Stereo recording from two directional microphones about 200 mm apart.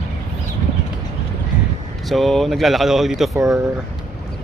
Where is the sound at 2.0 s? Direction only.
Centre (ahead or behind).